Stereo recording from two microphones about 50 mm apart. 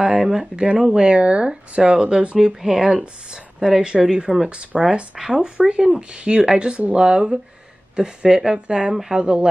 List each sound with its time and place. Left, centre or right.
0.0 s a woman's voice: centre